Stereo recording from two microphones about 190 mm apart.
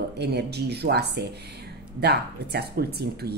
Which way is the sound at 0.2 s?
60° right (ahead or behind).